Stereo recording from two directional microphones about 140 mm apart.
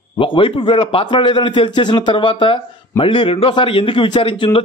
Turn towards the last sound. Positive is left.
turn(degrees=40)  # may be behind; listen again after turning